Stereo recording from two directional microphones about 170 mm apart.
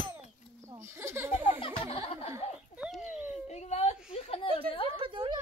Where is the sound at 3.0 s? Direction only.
45° left (ahead or behind).